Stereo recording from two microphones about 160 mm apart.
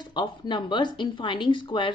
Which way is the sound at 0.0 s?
30° left (ahead or behind).